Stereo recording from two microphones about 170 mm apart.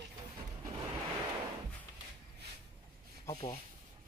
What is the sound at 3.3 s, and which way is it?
Speech, 35° left (ahead or behind).